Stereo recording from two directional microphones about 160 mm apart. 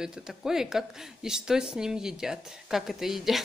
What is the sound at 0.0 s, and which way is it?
Speech, centre (ahead or behind).